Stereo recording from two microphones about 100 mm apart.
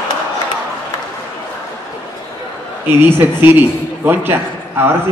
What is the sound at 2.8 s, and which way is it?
A man's voice, 20° right (ahead or behind).